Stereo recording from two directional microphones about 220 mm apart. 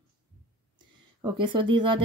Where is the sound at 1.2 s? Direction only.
20° right (ahead or behind).